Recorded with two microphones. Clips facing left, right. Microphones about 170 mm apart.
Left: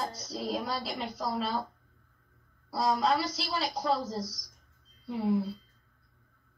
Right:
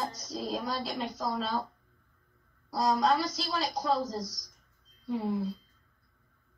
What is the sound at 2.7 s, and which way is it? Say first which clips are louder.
A woman's voice: right 1 dB; 5° left (ahead or behind).